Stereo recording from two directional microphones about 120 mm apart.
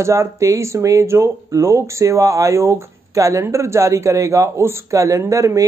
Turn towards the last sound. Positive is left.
turn(degrees=-25)  # may be behind; listen again after turning